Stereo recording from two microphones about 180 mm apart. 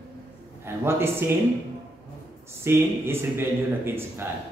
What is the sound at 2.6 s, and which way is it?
A man's voice, 15° right (ahead or behind).